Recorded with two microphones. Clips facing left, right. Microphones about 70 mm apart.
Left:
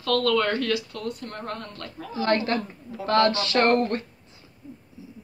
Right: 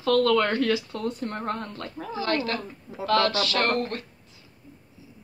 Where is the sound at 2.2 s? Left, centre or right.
Left.